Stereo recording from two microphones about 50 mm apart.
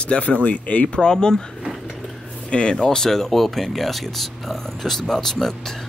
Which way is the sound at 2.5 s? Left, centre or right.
Centre.